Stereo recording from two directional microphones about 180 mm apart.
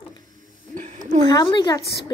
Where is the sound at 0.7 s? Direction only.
45° right (ahead or behind).